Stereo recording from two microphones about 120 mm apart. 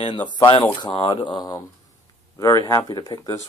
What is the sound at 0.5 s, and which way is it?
Speech, 50° left (ahead or behind).